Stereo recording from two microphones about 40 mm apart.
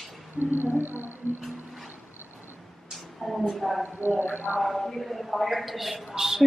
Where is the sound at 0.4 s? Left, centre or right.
Right.